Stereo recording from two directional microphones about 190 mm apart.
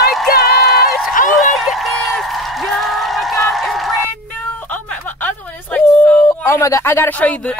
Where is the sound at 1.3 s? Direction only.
Centre (ahead or behind).